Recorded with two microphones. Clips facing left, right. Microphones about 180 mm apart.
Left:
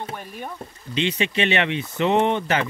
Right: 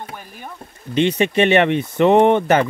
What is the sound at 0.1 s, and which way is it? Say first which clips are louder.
Speech: left 2 dB; centre (ahead or behind).